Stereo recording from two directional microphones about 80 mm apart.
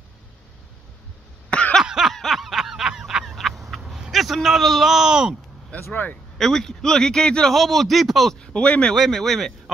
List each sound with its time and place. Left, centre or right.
1.5 s cough: centre
1.8 s a sound: centre
5.7 s speech: centre
6.3 s a man's voice: centre
8.9 s a man's voice: centre